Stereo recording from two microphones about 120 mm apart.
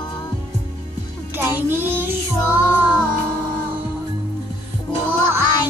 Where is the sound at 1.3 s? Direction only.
15° right (ahead or behind).